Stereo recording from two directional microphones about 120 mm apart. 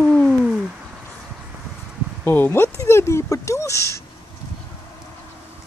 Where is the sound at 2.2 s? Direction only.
15° left (ahead or behind).